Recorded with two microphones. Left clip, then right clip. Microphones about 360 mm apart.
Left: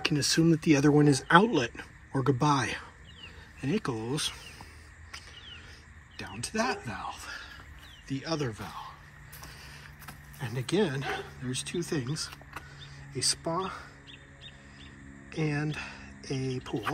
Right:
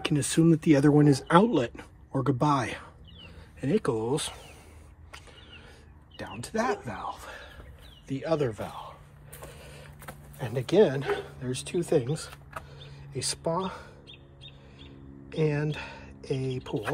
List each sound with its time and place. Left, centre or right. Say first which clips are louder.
0.1 s speech: right 5 dB; right
0.6 s speech: right 2 dB; centre
6.1 s speech: right 1 dB; centre
9.5 s a sound: even; centre
10.4 s speech: right 7 dB; centre
15.2 s a woman's voice: right 4 dB; centre